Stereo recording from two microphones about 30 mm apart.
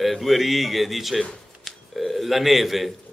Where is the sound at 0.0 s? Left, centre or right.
Centre.